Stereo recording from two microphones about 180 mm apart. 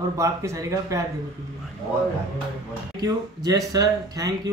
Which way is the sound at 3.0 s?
20° right (ahead or behind).